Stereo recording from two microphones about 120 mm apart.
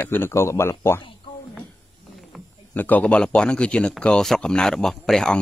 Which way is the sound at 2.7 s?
15° left (ahead or behind).